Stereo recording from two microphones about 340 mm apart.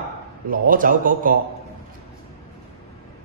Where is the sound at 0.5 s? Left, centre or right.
Right.